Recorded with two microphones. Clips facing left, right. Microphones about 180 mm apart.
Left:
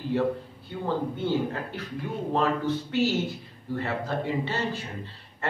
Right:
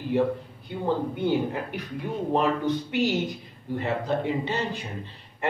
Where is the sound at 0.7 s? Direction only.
15° right (ahead or behind).